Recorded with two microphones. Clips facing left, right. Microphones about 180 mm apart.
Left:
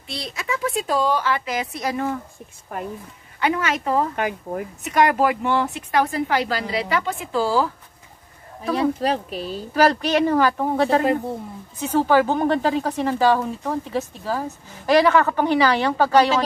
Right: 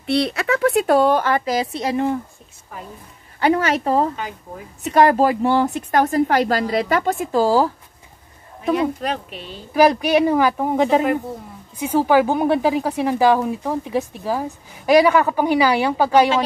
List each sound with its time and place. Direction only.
0.0 s speech: 65° right (ahead or behind); by 2.1 s 25° right (ahead or behind)
2.7 s speech: 60° left (ahead or behind)
3.3 s a woman's voice: 35° right (ahead or behind)
4.1 s speech: 65° left (ahead or behind)
4.8 s speech: 30° right (ahead or behind)
8.7 s speech: 35° left (ahead or behind)
9.8 s speech: 10° right (ahead or behind)